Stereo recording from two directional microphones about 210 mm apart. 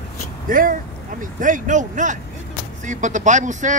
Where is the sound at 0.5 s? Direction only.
40° right (ahead or behind).